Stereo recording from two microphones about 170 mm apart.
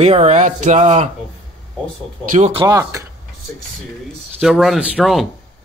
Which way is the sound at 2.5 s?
20° right (ahead or behind).